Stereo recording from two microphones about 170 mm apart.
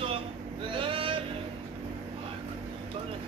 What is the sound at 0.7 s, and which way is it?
Vehicle, 30° right (ahead or behind).